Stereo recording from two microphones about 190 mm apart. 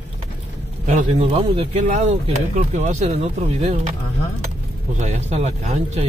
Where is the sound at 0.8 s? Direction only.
35° right (ahead or behind).